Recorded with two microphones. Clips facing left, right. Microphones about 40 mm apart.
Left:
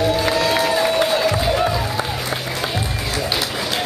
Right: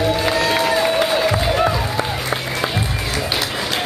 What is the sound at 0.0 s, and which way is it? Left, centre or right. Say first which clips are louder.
Music: even; centre.